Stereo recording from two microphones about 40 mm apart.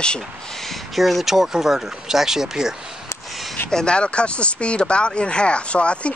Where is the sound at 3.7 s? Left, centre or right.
Left.